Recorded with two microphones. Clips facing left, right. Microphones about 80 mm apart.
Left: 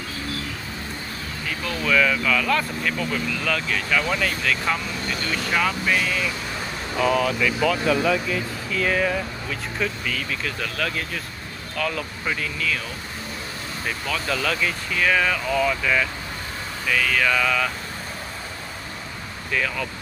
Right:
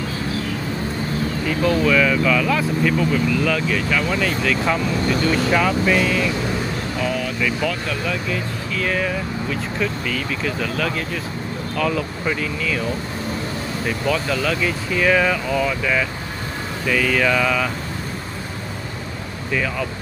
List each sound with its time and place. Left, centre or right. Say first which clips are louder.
1.6 s speech: right 5 dB; centre
13.8 s speech: right 5 dB; centre
19.5 s speech: right 3 dB; centre